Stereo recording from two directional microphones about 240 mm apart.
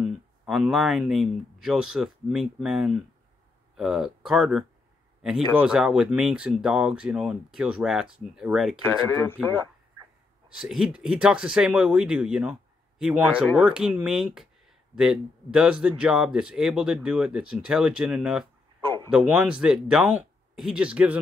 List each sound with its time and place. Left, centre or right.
0.0 s speech: centre
8.8 s speech: centre
10.5 s speech: centre
18.8 s a sound: right
19.0 s speech: centre